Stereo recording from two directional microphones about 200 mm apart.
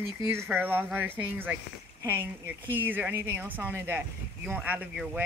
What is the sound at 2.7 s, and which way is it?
A woman's voice, 10° right (ahead or behind).